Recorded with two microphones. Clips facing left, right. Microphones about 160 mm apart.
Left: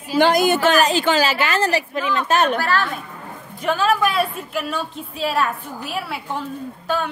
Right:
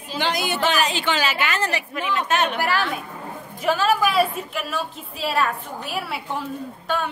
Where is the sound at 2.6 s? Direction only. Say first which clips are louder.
Left 2 dB; 10° right (ahead or behind).